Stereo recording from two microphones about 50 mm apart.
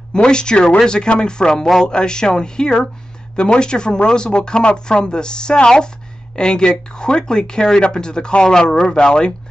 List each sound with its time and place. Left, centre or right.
0.1 s speech: centre